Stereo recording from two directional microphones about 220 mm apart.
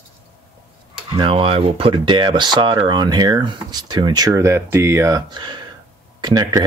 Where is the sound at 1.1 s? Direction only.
25° right (ahead or behind).